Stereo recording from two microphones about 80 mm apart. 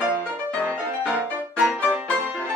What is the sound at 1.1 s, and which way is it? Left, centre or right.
Music, centre.